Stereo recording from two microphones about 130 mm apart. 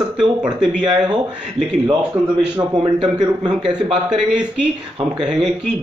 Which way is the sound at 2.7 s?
40° right (ahead or behind).